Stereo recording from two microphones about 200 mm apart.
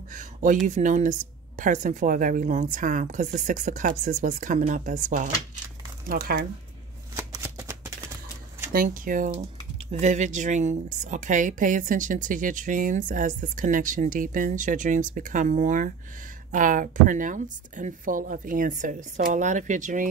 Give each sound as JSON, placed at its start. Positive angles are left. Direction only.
{"t": 0.1, "sound": "a woman's voice", "side_deg": -40}
{"t": 7.2, "sound": "shuffling cards", "side_deg": -15}
{"t": 8.7, "sound": "a woman's voice", "side_deg": -45}